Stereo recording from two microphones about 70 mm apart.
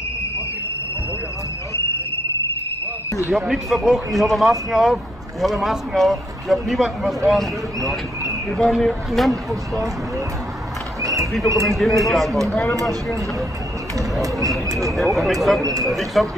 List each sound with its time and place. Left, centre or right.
3.3 s speech: centre
11.0 s horse: right
11.6 s speech: centre
14.8 s speech: centre